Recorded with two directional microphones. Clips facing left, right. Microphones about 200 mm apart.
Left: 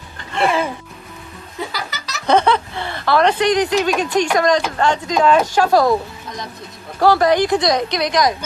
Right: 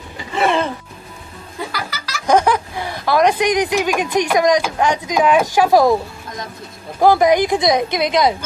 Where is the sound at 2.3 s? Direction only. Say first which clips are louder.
Even; 10° right (ahead or behind).